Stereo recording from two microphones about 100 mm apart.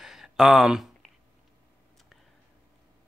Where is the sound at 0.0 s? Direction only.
5° right (ahead or behind).